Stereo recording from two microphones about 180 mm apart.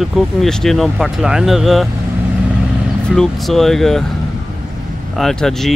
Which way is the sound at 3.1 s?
Centre (ahead or behind).